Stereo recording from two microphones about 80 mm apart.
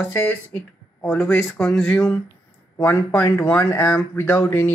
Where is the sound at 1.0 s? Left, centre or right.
Centre.